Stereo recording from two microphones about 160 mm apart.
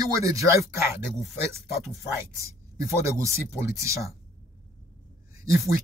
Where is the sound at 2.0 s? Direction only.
20° right (ahead or behind).